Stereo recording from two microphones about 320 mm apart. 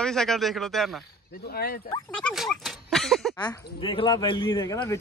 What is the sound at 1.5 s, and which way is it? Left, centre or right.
Speech, left.